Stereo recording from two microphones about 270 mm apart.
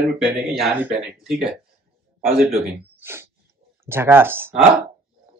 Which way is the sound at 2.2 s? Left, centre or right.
Right.